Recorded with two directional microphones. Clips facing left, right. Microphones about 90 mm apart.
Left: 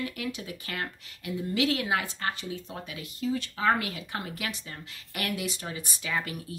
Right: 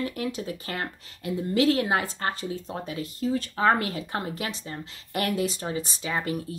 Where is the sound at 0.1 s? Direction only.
35° right (ahead or behind).